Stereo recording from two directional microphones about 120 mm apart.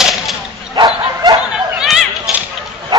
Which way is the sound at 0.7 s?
40° right (ahead or behind).